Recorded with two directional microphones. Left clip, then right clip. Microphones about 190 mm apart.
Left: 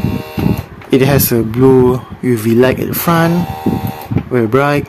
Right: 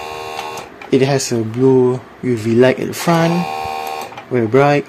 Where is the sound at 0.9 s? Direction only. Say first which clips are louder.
Left 3 dB; 25° left (ahead or behind).